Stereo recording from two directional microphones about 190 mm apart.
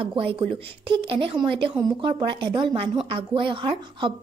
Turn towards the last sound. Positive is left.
turn(degrees=-25)  # may be behind; listen again after turning